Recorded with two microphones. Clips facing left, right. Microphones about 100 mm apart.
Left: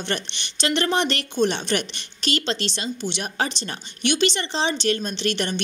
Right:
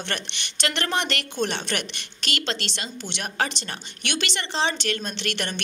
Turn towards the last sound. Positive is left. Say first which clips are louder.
# left 5 dB
turn(degrees=25)  # may be behind; listen again after turning